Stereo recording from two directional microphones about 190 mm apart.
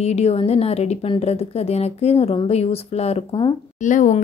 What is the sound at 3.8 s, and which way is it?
Speech, 40° left (ahead or behind).